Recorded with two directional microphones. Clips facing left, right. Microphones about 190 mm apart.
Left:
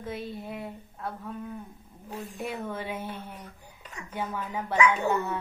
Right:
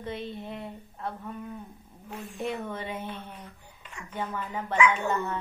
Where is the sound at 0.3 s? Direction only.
5° left (ahead or behind).